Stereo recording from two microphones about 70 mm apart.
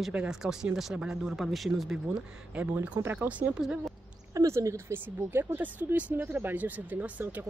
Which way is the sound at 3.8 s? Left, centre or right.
Right.